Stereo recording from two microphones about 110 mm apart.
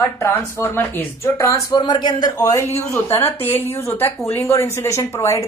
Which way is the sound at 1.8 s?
40° left (ahead or behind).